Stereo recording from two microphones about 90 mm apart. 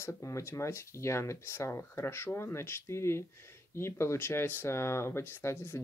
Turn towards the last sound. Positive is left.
turn(degrees=30)  # may be behind; listen again after turning